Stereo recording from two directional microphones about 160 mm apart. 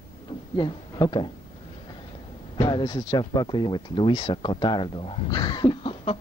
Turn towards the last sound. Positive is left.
turn(degrees=30)  # may be behind; listen again after turning